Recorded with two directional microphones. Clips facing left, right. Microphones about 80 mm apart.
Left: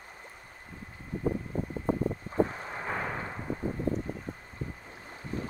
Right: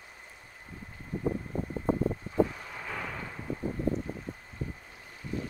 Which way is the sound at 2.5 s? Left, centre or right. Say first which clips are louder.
Left 4 dB; left.